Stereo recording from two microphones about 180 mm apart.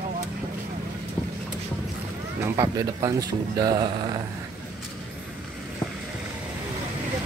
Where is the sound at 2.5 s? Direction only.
20° right (ahead or behind).